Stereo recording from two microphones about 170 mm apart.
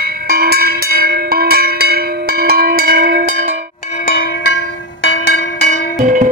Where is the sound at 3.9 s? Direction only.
55° left (ahead or behind).